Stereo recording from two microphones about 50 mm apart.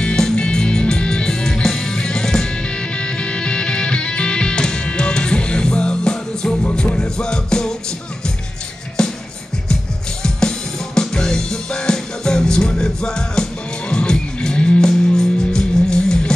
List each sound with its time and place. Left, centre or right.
0.0 s music: centre
9.0 s music: centre
11.0 s music: centre